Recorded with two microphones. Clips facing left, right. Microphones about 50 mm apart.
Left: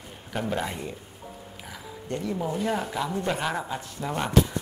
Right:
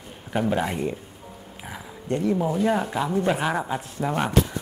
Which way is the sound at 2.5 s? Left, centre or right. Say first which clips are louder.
Right 5 dB; centre.